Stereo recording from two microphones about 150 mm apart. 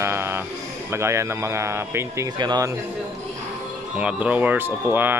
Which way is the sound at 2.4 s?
30° right (ahead or behind).